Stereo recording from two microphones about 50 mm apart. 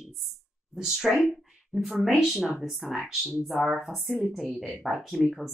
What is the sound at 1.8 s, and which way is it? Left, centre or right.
Speech, centre.